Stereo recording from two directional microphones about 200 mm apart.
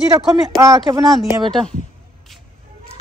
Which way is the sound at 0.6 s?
15° right (ahead or behind).